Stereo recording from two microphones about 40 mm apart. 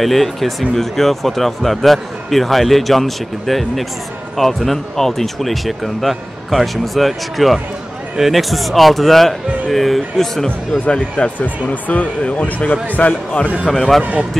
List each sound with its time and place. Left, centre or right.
0.0 s speech: centre
10.9 s speech: left
11.6 s speech: left
12.4 s speech: left